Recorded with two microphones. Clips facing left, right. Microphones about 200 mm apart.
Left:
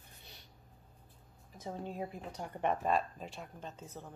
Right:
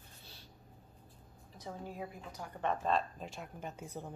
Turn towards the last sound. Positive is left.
turn(degrees=-10)  # may be behind; listen again after turning